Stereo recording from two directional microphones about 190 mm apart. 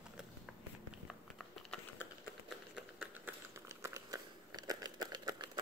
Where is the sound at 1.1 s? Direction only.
5° left (ahead or behind).